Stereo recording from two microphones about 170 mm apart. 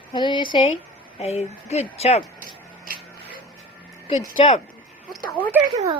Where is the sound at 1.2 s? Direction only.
40° left (ahead or behind).